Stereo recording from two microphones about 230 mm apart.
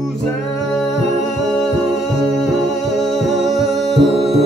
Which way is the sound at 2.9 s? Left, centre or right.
Centre.